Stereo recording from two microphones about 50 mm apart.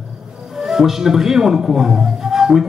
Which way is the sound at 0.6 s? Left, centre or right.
Centre.